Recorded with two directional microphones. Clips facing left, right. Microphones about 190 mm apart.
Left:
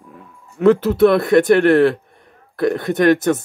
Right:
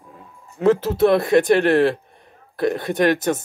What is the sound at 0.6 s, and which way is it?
Speech, 65° left (ahead or behind).